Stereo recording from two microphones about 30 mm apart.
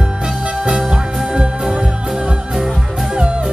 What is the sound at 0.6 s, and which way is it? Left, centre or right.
Music, right.